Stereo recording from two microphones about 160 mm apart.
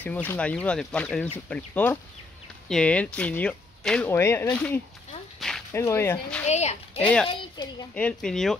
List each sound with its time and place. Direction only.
0.0 s speech: 10° left (ahead or behind)
6.4 s speech: 45° left (ahead or behind)
7.0 s speech: 10° left (ahead or behind)
7.6 s a child's voice: 25° left (ahead or behind)
7.9 s speech: 5° left (ahead or behind)